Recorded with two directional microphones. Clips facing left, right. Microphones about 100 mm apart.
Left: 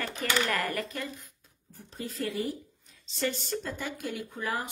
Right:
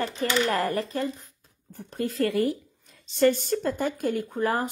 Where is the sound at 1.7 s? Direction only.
65° right (ahead or behind).